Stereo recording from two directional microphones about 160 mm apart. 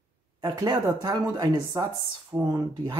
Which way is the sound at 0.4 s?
25° right (ahead or behind).